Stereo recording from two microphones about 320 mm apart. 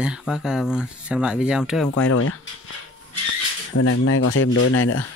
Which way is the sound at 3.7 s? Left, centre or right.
Left.